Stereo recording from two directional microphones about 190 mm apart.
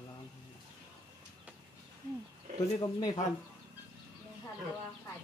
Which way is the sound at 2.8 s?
20° left (ahead or behind).